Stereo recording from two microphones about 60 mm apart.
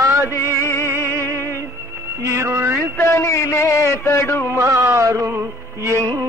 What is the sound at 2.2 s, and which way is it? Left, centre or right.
Music, right.